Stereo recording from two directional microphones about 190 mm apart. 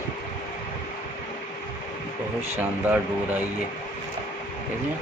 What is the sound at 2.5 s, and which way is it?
Speech, 10° right (ahead or behind).